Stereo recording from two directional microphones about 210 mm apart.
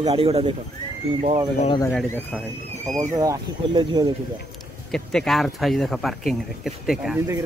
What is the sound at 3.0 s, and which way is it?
Speech, 15° right (ahead or behind).